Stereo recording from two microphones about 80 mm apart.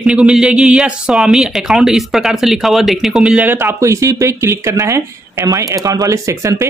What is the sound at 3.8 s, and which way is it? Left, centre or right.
Speech, right.